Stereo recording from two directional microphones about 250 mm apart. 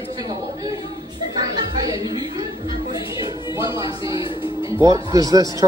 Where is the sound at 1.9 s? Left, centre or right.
Centre.